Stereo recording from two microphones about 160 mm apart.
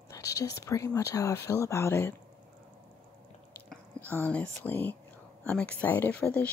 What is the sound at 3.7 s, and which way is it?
Speech, 10° left (ahead or behind).